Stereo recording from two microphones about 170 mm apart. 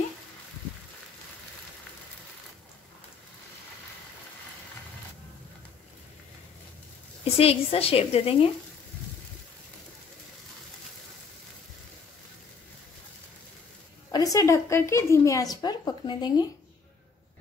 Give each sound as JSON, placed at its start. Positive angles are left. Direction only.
{"t": 7.3, "sound": "a woman's voice", "side_deg": 35}
{"t": 14.1, "sound": "a woman's voice", "side_deg": 20}